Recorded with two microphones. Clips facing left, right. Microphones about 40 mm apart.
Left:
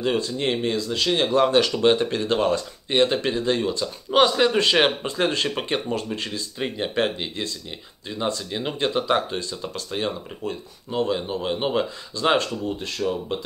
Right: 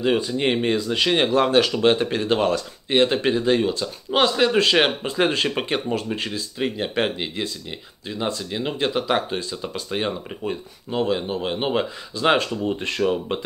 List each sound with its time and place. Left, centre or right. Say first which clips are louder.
0.0 s speech: right 3 dB; centre
1.3 s speech: right 1 dB; centre
12.6 s speech: right 4 dB; right